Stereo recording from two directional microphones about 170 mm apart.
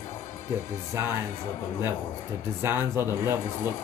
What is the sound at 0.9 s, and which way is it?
Speech, 15° right (ahead or behind).